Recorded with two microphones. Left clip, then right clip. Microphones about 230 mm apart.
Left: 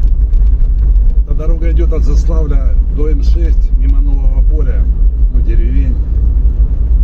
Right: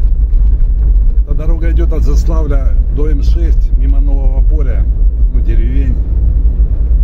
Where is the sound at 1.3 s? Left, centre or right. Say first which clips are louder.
Even; right.